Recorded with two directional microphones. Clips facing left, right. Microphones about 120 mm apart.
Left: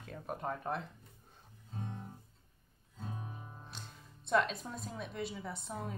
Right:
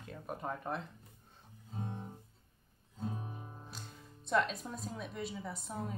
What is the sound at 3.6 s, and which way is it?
Speech, centre (ahead or behind).